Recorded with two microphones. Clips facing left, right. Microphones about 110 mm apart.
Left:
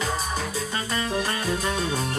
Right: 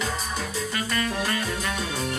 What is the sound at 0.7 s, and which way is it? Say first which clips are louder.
Music: left 1 dB; 25° left (ahead or behind).